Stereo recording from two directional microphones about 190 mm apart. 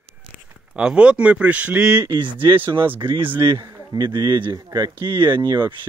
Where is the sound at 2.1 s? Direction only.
25° right (ahead or behind).